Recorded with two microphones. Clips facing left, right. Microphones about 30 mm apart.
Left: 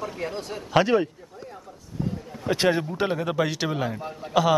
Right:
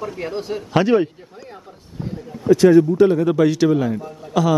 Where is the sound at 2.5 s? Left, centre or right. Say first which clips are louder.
Right 11 dB; left.